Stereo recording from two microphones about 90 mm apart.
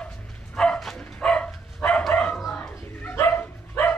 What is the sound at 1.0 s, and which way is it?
Dog, 10° left (ahead or behind).